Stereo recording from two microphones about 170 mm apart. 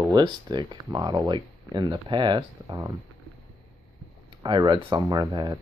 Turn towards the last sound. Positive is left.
turn(degrees=-25)  # may be behind; listen again after turning